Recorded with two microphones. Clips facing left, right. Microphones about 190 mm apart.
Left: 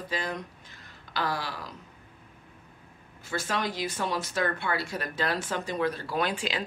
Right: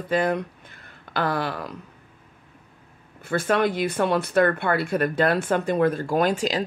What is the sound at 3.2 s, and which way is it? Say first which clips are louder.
Speech: right 9 dB; 60° right (ahead or behind).